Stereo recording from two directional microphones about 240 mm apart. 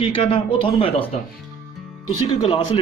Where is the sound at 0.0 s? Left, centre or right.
Left.